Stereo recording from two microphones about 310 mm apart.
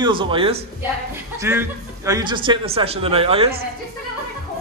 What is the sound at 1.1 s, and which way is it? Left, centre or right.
Speech, centre.